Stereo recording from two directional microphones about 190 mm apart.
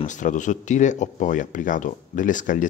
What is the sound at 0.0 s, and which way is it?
Speech, 40° left (ahead or behind).